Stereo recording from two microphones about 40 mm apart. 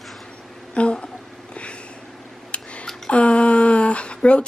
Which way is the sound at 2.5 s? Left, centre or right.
Left.